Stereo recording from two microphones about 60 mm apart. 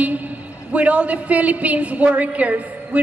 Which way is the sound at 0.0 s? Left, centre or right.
Right.